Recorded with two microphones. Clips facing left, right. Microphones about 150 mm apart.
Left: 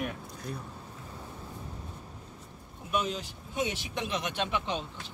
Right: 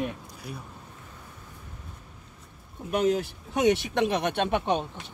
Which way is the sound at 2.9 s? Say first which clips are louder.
Right 8 dB; 70° right (ahead or behind).